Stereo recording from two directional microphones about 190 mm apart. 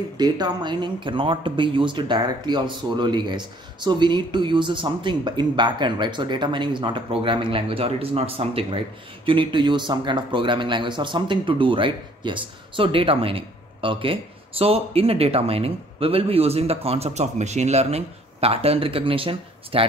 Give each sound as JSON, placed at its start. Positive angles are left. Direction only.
{"t": 0.2, "sound": "speech", "side_deg": -20}